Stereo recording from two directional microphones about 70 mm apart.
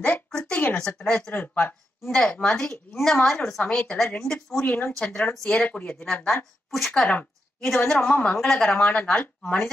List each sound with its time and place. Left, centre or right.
0.0 s a sound: centre
1.3 s speech: left
2.2 s speech: centre
4.6 s speech: left
4.9 s speech: centre
6.2 s speech: centre